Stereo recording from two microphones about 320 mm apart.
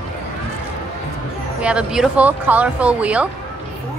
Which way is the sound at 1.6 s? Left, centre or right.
Centre.